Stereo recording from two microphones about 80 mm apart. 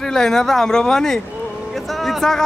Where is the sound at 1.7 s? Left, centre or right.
Centre.